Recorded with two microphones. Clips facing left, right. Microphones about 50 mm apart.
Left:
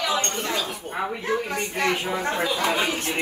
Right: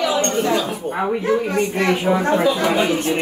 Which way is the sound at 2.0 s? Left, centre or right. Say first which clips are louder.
Right 9 dB; right.